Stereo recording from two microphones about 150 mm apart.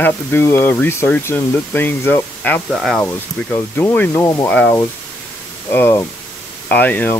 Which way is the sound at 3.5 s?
15° left (ahead or behind).